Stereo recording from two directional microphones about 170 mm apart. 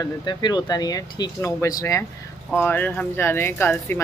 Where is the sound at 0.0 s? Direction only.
25° left (ahead or behind).